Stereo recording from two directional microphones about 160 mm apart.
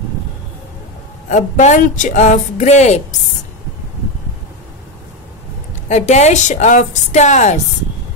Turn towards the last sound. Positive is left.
turn(degrees=50)  # may be behind; listen again after turning